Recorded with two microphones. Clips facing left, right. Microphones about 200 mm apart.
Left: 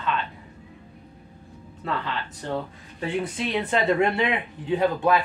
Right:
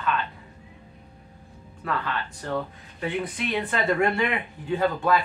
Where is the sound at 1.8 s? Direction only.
25° left (ahead or behind).